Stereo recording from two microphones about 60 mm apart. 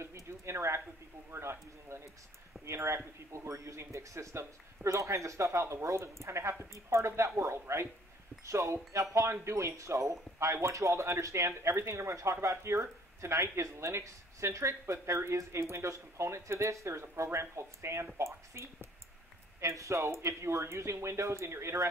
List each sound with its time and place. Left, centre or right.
0.0 s a sound: right
2.6 s speech: right
3.3 s speech: right